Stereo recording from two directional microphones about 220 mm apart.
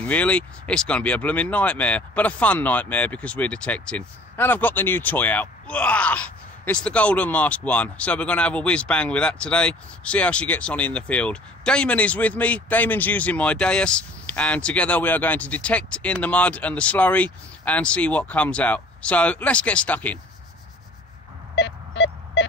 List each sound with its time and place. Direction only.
0.0 s speech: 5° left (ahead or behind)
21.5 s sidetone: 55° left (ahead or behind)